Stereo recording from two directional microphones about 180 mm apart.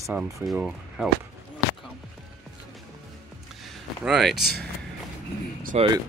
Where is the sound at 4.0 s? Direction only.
Centre (ahead or behind).